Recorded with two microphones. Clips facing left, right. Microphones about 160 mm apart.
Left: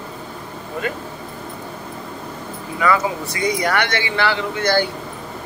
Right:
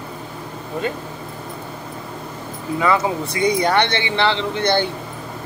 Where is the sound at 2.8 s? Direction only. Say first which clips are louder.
Even; 25° right (ahead or behind).